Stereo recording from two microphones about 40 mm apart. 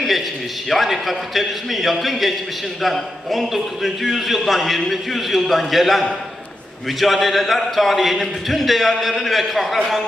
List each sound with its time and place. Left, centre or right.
0.7 s a man's voice: centre